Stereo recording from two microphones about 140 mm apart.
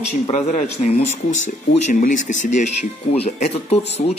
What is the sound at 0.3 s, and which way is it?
Speech, 55° left (ahead or behind).